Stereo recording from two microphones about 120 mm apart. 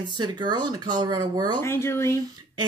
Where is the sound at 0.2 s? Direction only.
35° right (ahead or behind).